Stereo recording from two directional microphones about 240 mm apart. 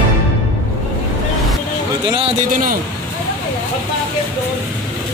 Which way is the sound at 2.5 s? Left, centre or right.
Right.